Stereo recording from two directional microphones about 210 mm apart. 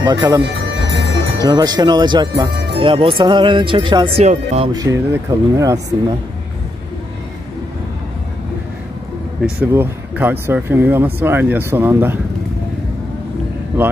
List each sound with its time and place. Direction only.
0.0 s speech: 20° right (ahead or behind)
0.8 s music: 55° right (ahead or behind)
1.4 s speech: 20° right (ahead or behind)
4.3 s speech: 35° right (ahead or behind)
4.7 s speech: 15° right (ahead or behind)
9.4 s speech: 10° right (ahead or behind)